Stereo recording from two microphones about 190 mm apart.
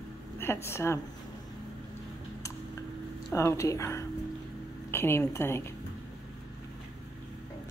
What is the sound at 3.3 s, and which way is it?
Speech, 15° left (ahead or behind).